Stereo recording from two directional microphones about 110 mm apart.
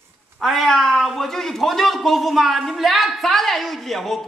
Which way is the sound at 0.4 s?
Centre (ahead or behind).